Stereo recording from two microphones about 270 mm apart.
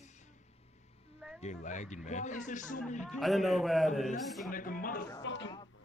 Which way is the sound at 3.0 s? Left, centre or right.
Centre.